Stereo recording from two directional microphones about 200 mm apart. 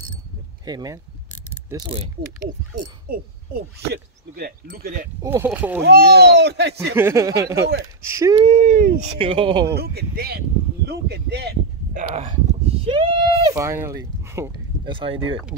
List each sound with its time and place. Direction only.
0.7 s speech: 20° right (ahead or behind)
3.1 s speech: 50° right (ahead or behind)
5.2 s speech: 10° right (ahead or behind)
5.9 s speech: 55° right (ahead or behind)
7.0 s speech: 15° right (ahead or behind)
7.7 s speech: 90° right
8.2 s speech: 20° right (ahead or behind)
8.5 s speech: 35° right (ahead or behind)
9.7 s speech: 55° right (ahead or behind)
11.9 s speech: 40° right (ahead or behind)
12.8 s speech: 25° right (ahead or behind)
13.6 s speech: 15° right (ahead or behind)
14.9 s speech: 25° right (ahead or behind)